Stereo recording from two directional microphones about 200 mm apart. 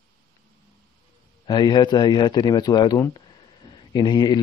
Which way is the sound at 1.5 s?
20° left (ahead or behind).